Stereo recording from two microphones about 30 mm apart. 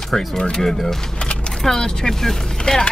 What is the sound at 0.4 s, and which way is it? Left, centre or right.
Speech, left.